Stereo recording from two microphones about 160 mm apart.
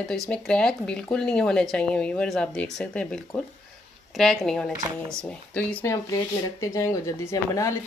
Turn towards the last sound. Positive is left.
turn(degrees=20)  # may be behind; listen again after turning